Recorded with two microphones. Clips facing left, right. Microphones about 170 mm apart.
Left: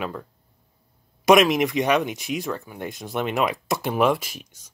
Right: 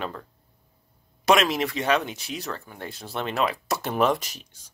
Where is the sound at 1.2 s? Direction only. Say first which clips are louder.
Left 5 dB; 15° left (ahead or behind).